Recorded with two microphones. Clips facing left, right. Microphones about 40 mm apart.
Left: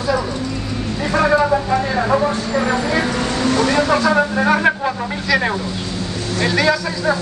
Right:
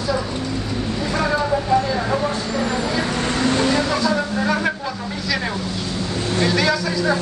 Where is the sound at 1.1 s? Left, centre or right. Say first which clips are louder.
Left 6 dB; left.